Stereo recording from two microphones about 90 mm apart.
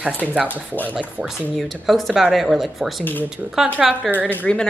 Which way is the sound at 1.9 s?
Centre (ahead or behind).